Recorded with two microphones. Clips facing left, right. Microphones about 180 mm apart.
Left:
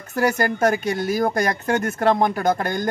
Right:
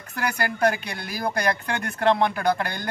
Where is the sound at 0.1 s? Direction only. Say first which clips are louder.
Left 7 dB; 40° left (ahead or behind).